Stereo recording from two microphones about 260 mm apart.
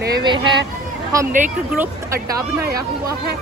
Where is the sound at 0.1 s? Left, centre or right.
Centre.